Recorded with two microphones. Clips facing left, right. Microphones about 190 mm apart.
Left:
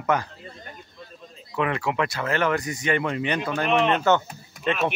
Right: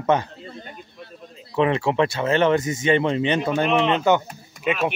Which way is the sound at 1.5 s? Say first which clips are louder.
Right 5 dB; 25° right (ahead or behind).